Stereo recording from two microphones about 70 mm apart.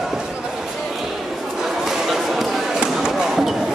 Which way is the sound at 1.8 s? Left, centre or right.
Centre.